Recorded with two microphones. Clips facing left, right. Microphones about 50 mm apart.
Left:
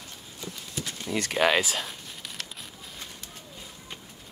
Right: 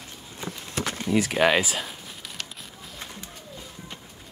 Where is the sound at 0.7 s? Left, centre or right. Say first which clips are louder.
Right 7 dB; right.